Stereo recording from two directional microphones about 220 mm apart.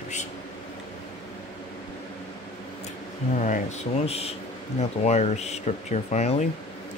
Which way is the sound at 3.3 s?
35° left (ahead or behind).